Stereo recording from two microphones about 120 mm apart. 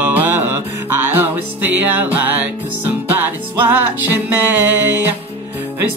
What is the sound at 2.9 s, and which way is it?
Music, 15° right (ahead or behind).